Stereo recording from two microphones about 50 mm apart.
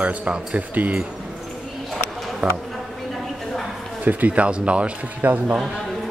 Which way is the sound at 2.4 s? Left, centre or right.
Right.